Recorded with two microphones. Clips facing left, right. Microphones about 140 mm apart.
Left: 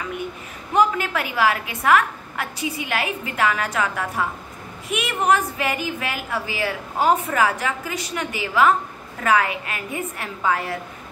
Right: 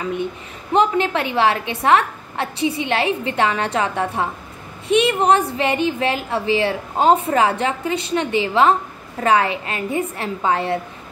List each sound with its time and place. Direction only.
0.7 s a woman's voice: 25° right (ahead or behind)